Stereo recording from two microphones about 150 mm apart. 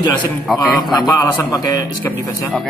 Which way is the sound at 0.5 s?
Centre (ahead or behind).